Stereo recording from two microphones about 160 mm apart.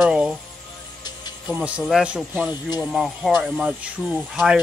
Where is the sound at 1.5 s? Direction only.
5° right (ahead or behind).